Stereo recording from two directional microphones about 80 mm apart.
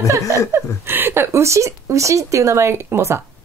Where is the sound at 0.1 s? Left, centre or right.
Right.